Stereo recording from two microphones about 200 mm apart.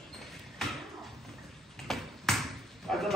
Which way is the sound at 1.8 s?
Centre (ahead or behind).